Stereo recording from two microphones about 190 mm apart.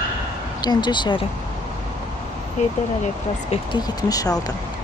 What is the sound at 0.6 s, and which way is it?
Speech, 20° left (ahead or behind).